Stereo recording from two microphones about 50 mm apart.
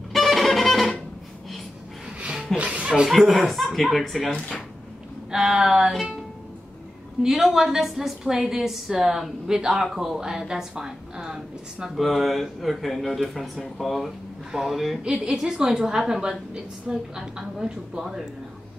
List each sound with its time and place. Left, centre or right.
0.1 s music: centre
2.5 s speech: right
3.1 s speech: centre
4.3 s speech: centre
5.3 s a woman's voice: centre
7.2 s a woman's voice: centre
12.0 s speech: centre
15.0 s a woman's voice: centre